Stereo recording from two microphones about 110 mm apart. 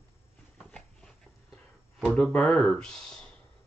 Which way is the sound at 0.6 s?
10° left (ahead or behind).